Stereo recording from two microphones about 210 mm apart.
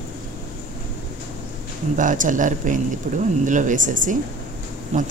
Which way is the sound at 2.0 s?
40° right (ahead or behind).